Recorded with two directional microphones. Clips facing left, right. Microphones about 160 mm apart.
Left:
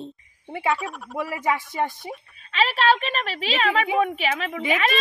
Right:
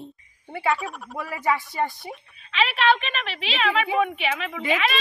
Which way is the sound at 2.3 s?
40° left (ahead or behind).